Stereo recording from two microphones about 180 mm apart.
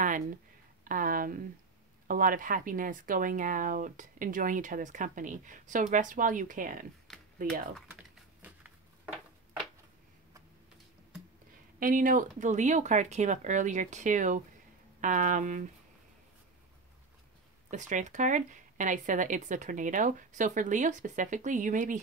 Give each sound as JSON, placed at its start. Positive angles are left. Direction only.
{"t": 0.8, "sound": "speech", "side_deg": -50}
{"t": 8.4, "sound": "a sound", "side_deg": -10}
{"t": 11.8, "sound": "speech", "side_deg": -50}
{"t": 17.6, "sound": "speech", "side_deg": -45}